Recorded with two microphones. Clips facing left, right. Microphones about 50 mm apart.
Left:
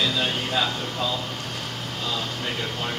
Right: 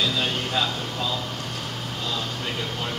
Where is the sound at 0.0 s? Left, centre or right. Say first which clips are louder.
Even; centre.